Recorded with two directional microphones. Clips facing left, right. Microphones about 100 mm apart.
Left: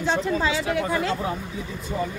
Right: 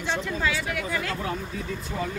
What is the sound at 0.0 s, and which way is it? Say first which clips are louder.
Speech: left 4 dB; 35° left (ahead or behind).